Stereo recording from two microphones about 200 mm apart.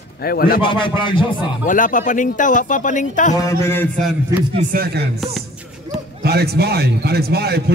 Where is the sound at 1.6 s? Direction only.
40° left (ahead or behind).